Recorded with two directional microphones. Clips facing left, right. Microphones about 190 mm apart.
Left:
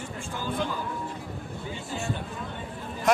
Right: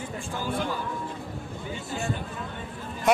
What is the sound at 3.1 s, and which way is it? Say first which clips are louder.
Speech: right 1 dB; centre (ahead or behind).